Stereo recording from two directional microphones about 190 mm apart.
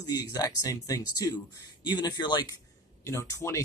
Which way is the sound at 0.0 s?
20° left (ahead or behind).